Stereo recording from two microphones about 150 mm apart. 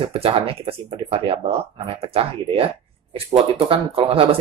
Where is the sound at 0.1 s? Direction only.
40° right (ahead or behind).